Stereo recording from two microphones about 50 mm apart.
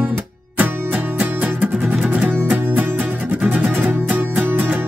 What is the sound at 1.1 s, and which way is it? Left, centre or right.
Music, right.